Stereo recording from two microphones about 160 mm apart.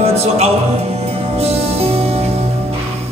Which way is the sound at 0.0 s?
40° right (ahead or behind).